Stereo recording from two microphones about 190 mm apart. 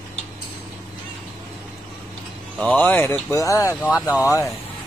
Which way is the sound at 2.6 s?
10° left (ahead or behind).